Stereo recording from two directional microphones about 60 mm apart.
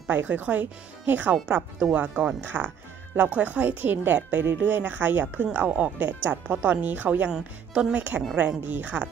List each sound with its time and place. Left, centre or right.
0.1 s a woman's voice: right
7.2 s speech: centre
7.9 s a woman's voice: right